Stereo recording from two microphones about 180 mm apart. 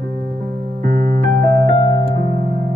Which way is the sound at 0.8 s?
45° right (ahead or behind).